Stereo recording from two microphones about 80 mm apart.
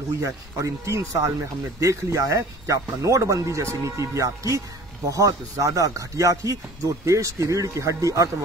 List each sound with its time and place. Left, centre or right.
0.2 s speech: right